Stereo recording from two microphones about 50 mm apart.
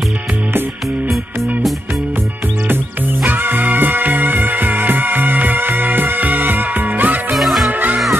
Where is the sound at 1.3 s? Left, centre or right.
Right.